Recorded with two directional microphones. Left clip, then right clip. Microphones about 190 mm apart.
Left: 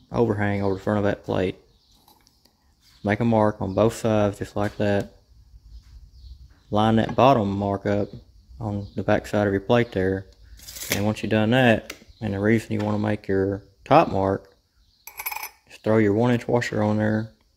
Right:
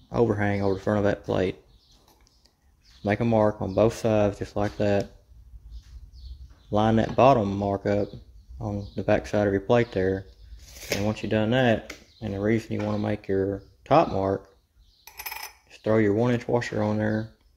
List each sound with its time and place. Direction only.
0.1 s speech: 10° left (ahead or behind)
3.0 s speech: 15° left (ahead or behind)
6.7 s speech: 10° left (ahead or behind)
15.0 s cutlery: centre (ahead or behind)
15.7 s speech: 20° left (ahead or behind)